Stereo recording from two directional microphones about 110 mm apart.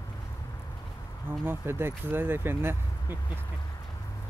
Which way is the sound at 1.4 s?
20° right (ahead or behind).